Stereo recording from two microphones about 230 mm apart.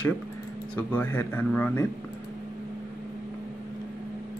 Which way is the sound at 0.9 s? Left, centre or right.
Centre.